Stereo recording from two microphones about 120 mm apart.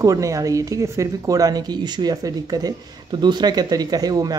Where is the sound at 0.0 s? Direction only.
30° right (ahead or behind).